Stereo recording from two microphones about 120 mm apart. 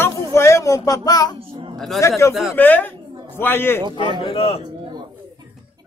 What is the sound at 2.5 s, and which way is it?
A man's voice, 15° left (ahead or behind).